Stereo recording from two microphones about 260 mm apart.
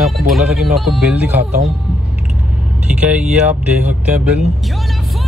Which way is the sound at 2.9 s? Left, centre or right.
Centre.